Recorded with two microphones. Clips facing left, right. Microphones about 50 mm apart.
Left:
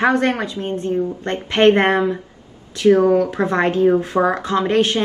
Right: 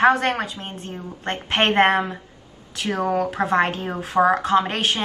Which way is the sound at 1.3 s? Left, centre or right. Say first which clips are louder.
Left 6 dB; right.